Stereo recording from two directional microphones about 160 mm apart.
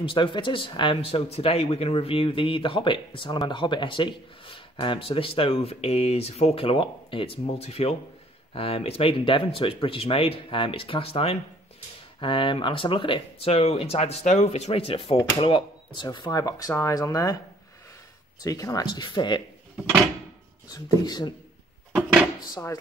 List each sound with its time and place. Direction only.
0.0 s speech: 30° left (ahead or behind)
18.4 s speech: 20° left (ahead or behind)
20.6 s speech: 25° left (ahead or behind)